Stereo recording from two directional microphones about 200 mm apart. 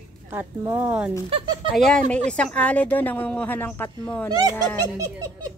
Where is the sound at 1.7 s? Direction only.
Centre (ahead or behind).